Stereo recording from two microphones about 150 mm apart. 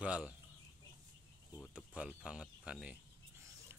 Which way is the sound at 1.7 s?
5° right (ahead or behind).